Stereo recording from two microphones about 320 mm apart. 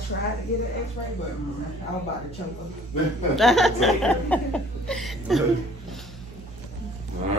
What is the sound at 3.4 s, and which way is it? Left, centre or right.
Chuckle, centre.